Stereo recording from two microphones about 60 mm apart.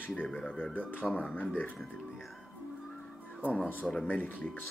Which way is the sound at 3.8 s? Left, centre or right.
Centre.